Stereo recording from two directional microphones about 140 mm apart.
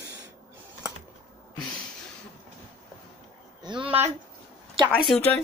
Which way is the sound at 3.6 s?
35° right (ahead or behind).